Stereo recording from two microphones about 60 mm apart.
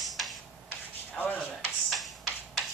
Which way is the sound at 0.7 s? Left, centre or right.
Left.